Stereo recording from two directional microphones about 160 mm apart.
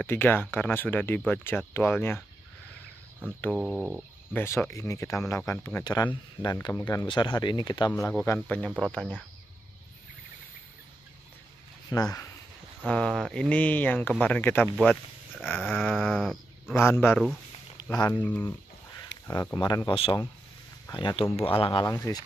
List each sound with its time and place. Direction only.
0.0 s speech: 15° left (ahead or behind)
3.5 s speech: 5° right (ahead or behind)
4.3 s speech: 15° left (ahead or behind)
7.1 s speech: 30° left (ahead or behind)
8.1 s speech: 10° left (ahead or behind)
11.9 s speech: 20° left (ahead or behind)
12.8 s speech: 5° left (ahead or behind)
16.7 s speech: 15° left (ahead or behind); by 21.8 s 35° left (ahead or behind)
21.8 s speech: 20° left (ahead or behind)